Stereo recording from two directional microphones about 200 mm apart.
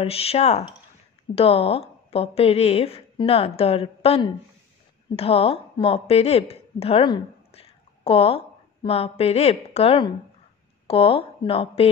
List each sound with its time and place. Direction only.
0.0 s a woman's voice: 30° left (ahead or behind)